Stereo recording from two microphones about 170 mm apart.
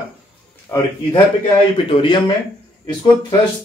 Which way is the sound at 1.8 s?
30° left (ahead or behind).